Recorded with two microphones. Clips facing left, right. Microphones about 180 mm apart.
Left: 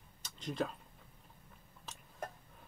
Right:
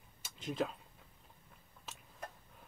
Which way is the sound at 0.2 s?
5° right (ahead or behind).